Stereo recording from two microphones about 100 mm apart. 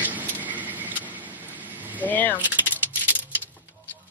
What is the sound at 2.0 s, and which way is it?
Speech, 15° left (ahead or behind).